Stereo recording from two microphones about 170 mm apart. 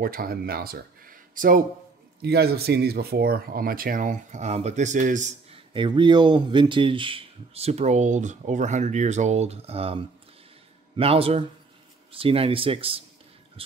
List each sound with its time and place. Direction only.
0.0 s speech: 60° right (ahead or behind)
2.2 s speech: 70° right (ahead or behind); by 5.6 s 45° right (ahead or behind)
5.7 s speech: 25° right (ahead or behind)
11.0 s speech: 35° right (ahead or behind)
13.6 s music: 35° right (ahead or behind)